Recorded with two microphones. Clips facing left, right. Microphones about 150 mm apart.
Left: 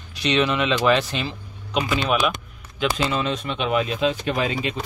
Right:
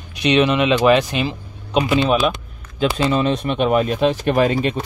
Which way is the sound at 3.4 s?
50° right (ahead or behind).